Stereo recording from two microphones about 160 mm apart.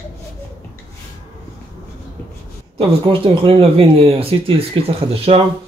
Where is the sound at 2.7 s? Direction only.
35° right (ahead or behind).